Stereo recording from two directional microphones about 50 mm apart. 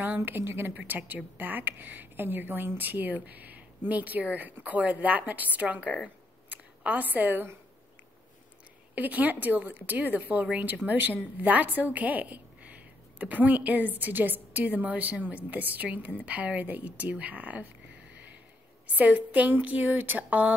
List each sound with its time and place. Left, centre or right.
0.0 s a woman's voice: right
8.9 s a woman's voice: right
18.9 s a woman's voice: right